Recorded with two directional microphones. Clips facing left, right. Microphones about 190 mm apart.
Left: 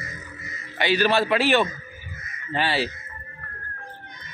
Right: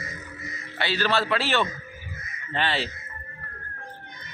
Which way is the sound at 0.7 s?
15° left (ahead or behind).